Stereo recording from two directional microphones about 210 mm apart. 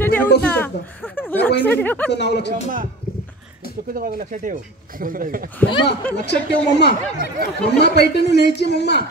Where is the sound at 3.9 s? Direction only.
40° right (ahead or behind).